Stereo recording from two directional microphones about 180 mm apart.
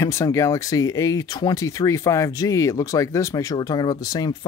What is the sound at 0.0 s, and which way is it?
Speech, 15° left (ahead or behind).